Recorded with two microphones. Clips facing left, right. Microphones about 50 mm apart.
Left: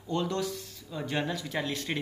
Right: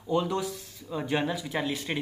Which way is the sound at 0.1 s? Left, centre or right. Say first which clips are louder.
Right 3 dB; centre.